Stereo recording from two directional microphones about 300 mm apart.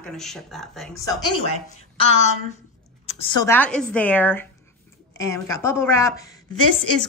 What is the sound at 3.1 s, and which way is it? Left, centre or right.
Speech, centre.